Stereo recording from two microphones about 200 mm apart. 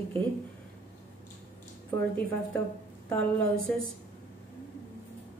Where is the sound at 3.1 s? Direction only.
5° left (ahead or behind).